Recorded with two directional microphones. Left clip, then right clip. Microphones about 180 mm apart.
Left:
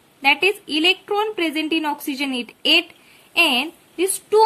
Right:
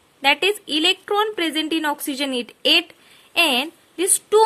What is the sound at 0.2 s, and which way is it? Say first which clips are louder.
Speech: left 1 dB; 45° right (ahead or behind).